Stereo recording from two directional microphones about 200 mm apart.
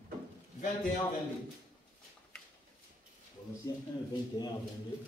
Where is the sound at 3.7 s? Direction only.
20° left (ahead or behind).